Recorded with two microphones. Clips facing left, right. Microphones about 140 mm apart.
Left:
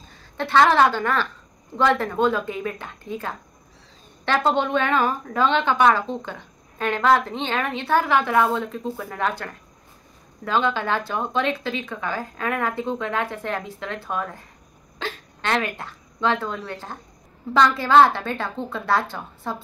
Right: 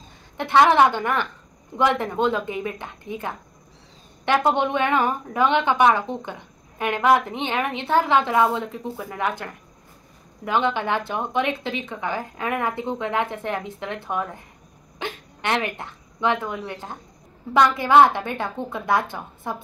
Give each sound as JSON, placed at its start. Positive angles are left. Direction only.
{"t": 0.4, "sound": "a woman's voice", "side_deg": -15}